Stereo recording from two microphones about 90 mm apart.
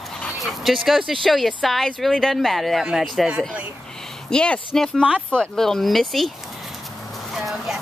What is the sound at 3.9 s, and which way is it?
Speech, 5° left (ahead or behind).